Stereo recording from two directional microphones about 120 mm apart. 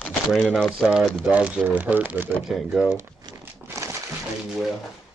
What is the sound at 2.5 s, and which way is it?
Speech, centre (ahead or behind).